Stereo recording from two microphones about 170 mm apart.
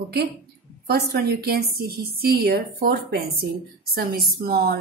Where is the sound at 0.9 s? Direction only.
70° right (ahead or behind).